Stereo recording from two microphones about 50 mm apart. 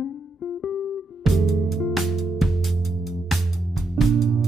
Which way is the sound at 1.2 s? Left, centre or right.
Centre.